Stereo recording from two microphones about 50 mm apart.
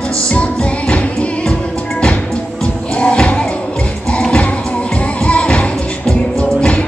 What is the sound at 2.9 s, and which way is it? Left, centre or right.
Music, left.